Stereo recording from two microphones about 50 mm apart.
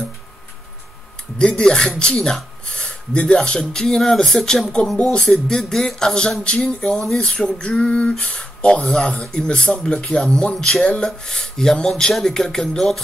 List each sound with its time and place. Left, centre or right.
1.5 s speech: centre
6.4 s female singing: centre
8.1 s speech: centre